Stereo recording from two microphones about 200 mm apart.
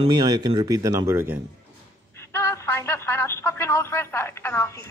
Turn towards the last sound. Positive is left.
turn(degrees=10)  # may be behind; listen again after turning